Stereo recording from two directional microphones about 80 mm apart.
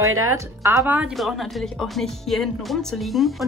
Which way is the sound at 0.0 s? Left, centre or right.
Right.